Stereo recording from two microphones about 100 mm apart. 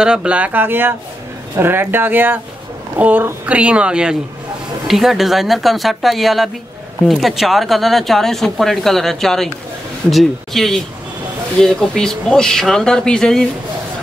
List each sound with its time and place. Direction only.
0.0 s speech: 10° right (ahead or behind); by 13.4 s 5° left (ahead or behind)